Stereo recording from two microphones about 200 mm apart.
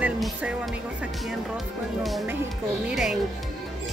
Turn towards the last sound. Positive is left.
turn(degrees=0)  # may be behind; listen again after turning